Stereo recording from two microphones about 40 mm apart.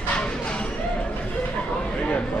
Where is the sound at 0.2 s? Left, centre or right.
Left.